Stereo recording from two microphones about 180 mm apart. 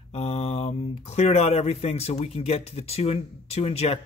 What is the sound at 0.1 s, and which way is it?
Speech, 35° left (ahead or behind).